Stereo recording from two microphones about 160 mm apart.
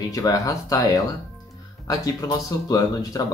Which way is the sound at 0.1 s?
20° left (ahead or behind).